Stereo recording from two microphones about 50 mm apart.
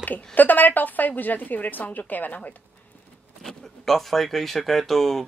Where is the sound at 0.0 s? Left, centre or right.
Left.